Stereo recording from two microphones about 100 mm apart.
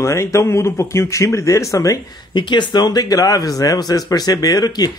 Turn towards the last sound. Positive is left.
turn(degrees=40)  # may be behind; listen again after turning